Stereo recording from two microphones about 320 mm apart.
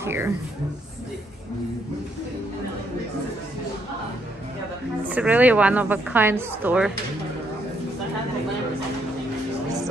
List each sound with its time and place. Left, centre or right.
0.0 s speech: centre
5.1 s a woman's voice: centre